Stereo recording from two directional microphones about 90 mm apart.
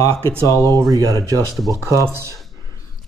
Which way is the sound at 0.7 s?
40° right (ahead or behind).